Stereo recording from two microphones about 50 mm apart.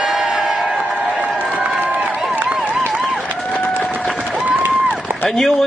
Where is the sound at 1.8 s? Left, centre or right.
Right.